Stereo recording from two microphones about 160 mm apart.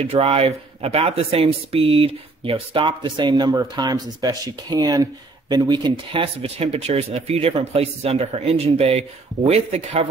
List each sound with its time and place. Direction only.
0.0 s speech: 35° right (ahead or behind)